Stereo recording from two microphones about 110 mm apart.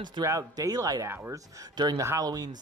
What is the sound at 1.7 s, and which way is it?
Speech, 40° right (ahead or behind).